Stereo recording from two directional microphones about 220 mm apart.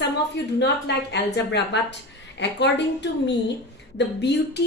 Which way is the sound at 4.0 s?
50° left (ahead or behind).